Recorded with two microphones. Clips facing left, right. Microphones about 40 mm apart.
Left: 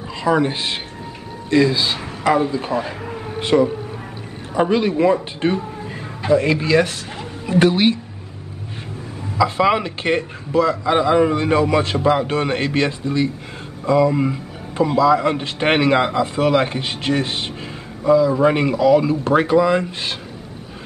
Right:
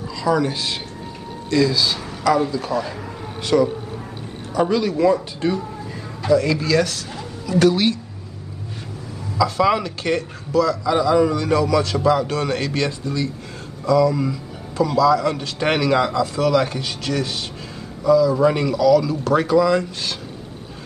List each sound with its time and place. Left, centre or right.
0.1 s a man's voice: left
9.4 s a man's voice: left